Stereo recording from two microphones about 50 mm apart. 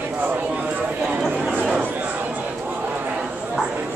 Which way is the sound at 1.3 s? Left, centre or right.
Right.